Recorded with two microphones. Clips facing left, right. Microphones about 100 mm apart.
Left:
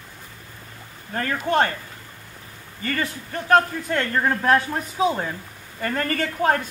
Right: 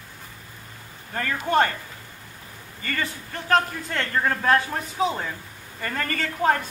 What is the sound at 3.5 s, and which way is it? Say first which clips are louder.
Speech: left 4 dB; 15° left (ahead or behind).